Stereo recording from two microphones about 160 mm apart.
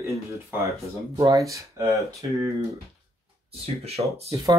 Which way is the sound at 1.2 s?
20° right (ahead or behind).